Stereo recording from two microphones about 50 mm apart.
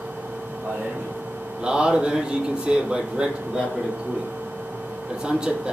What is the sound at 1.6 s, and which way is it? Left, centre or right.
A man's voice, centre.